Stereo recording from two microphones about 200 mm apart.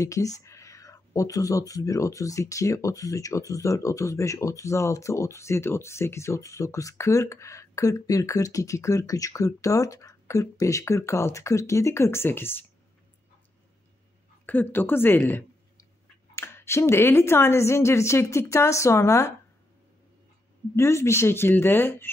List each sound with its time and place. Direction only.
0.0 s speech: 15° left (ahead or behind)
14.4 s speech: 10° left (ahead or behind)
20.7 s speech: 15° left (ahead or behind)